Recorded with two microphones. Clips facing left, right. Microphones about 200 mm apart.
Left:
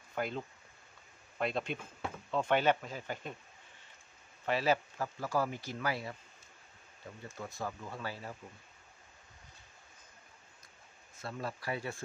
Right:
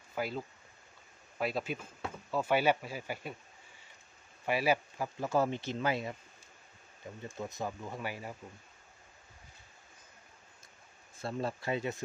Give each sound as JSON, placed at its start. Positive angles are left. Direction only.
{"t": 0.1, "sound": "speech", "side_deg": -5}
{"t": 4.5, "sound": "speech", "side_deg": -10}
{"t": 7.2, "sound": "speech", "side_deg": -20}
{"t": 11.1, "sound": "speech", "side_deg": -30}